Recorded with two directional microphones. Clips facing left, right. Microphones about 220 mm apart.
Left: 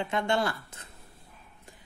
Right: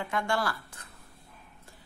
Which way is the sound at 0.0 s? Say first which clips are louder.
Left 3 dB; 20° left (ahead or behind).